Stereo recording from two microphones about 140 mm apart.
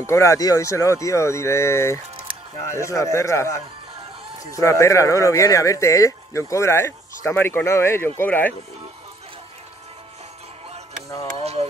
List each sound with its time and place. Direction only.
0.0 s speech: 20° left (ahead or behind)